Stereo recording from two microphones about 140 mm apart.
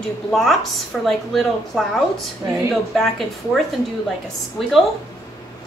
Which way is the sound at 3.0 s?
Centre (ahead or behind).